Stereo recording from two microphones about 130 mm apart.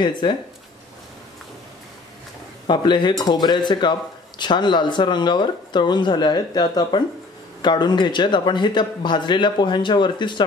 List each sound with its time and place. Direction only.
0.0 s speech: 35° left (ahead or behind)
2.6 s speech: 35° left (ahead or behind)